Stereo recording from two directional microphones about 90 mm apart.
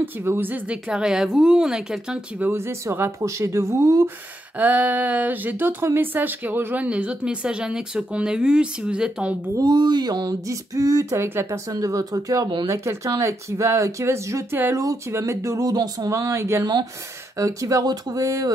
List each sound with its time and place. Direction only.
0.0 s speech: 25° right (ahead or behind); by 2.4 s 10° right (ahead or behind)
2.4 s speech: 30° right (ahead or behind)
4.6 s speech: 15° right (ahead or behind)
9.6 s speech: 50° right (ahead or behind)
11.1 s speech: 30° right (ahead or behind)
11.7 s speech: 40° right (ahead or behind)
15.7 s speech: 45° right (ahead or behind)